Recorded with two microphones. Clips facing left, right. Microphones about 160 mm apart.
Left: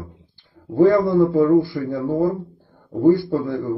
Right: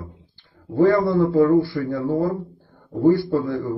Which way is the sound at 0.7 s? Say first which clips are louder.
Left 2 dB; 20° left (ahead or behind).